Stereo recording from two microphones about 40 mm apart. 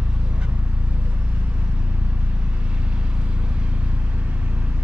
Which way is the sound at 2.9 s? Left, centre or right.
Right.